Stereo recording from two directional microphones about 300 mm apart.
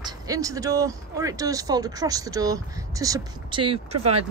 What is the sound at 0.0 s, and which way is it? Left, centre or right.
Speech, centre.